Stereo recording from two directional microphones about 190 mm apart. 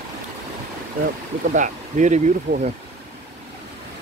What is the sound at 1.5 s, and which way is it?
Speech, 40° right (ahead or behind).